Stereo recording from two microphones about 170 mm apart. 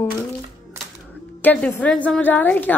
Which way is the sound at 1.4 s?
10° left (ahead or behind).